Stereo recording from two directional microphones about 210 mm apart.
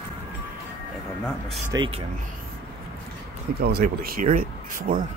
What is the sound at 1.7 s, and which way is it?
Speech, 20° right (ahead or behind).